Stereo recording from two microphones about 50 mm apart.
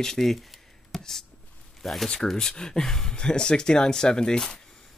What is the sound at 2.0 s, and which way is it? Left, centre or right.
Speech, centre.